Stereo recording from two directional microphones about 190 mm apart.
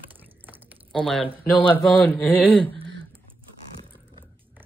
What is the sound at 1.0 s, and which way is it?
Speech, 5° left (ahead or behind).